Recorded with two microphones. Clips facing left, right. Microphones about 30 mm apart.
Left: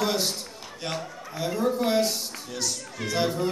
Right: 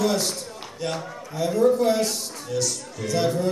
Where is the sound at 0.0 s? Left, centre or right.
Left.